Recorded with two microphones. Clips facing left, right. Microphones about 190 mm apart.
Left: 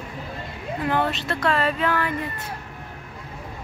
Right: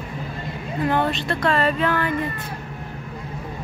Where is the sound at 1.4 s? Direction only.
5° left (ahead or behind).